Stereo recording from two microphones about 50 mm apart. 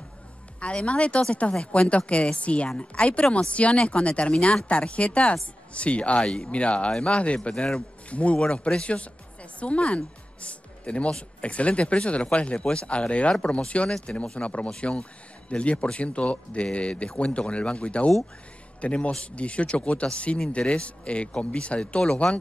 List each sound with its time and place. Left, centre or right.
0.6 s speech: left